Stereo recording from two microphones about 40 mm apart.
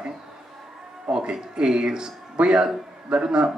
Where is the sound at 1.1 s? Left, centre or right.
Right.